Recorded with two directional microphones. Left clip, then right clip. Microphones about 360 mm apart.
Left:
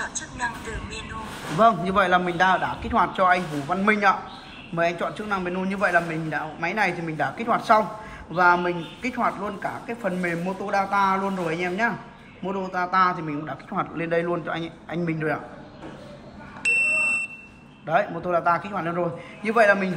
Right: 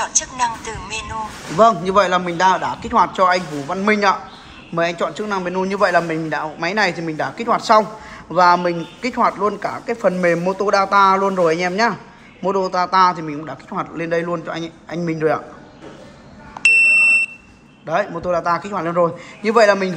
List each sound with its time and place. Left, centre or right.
0.1 s speech: centre
1.6 s a man's voice: centre
17.8 s a man's voice: centre